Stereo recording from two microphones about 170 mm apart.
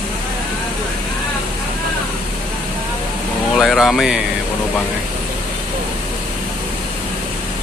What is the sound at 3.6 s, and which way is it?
Vehicle, centre (ahead or behind).